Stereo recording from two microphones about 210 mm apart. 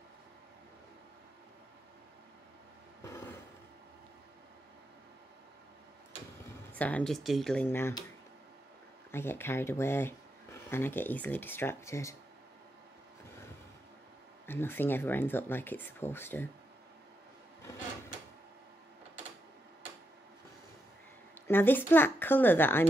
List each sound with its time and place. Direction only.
3.0 s a sound: 15° left (ahead or behind)
6.7 s speech: 5° left (ahead or behind)
9.1 s speech: 10° left (ahead or behind)
14.4 s speech: 10° left (ahead or behind)
21.5 s speech: 10° left (ahead or behind)